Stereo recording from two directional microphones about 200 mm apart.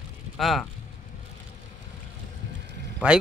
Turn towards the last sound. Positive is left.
turn(degrees=-5)  # may be behind; listen again after turning